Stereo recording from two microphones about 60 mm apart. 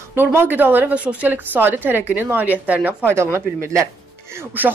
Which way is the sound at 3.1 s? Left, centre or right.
Right.